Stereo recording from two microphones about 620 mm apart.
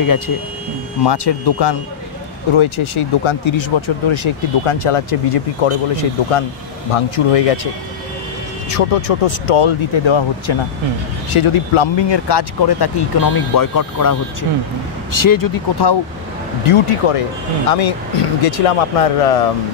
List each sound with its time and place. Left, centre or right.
1.0 s speech: left
2.5 s speech: left
8.6 s speech: left
15.1 s speech: left
16.6 s speech: left